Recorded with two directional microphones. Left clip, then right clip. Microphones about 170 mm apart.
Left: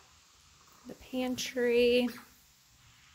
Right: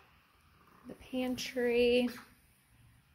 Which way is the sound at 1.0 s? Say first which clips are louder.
Left 2 dB; 20° left (ahead or behind).